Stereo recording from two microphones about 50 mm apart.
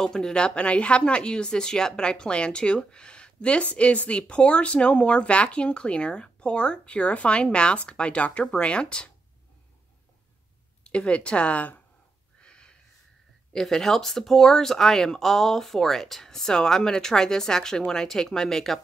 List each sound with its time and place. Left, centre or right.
0.0 s speech: centre
10.8 s speech: left
12.4 s wheeze: centre
13.5 s speech: centre